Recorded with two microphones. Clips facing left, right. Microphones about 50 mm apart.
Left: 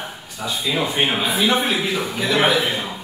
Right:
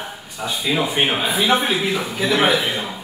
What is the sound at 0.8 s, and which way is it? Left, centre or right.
A man's voice, centre.